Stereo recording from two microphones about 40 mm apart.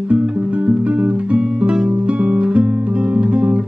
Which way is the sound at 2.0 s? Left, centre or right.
Right.